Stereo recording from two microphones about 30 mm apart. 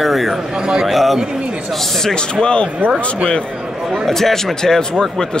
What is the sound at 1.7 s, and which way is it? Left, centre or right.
Speech, centre.